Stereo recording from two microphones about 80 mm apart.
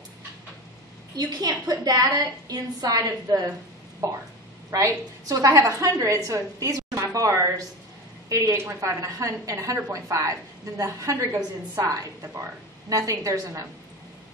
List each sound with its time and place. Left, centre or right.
1.1 s a woman's voice: right